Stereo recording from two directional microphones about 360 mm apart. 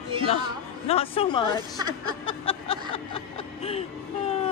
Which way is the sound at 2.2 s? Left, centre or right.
Centre.